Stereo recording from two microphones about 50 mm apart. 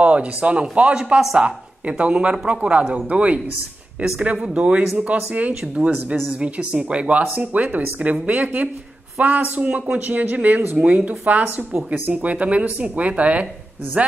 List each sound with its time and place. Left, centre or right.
0.0 s speech: right
5.5 s speech: centre; by 12.0 s right
12.1 s speech: right